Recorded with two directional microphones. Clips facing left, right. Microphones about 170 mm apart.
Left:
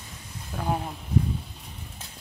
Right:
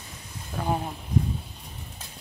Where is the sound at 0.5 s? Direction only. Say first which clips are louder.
Right 1 dB; 5° right (ahead or behind).